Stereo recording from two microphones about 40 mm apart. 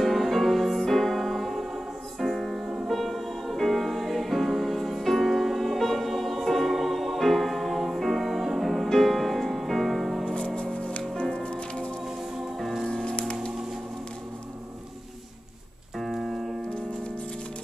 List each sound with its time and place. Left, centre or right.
0.0 s music: centre
2.5 s music: centre
10.2 s music: left
16.0 s keyboard: centre